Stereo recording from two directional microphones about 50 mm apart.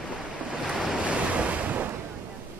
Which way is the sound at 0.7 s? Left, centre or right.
Centre.